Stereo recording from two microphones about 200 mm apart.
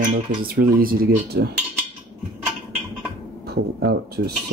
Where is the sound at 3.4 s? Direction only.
55° right (ahead or behind).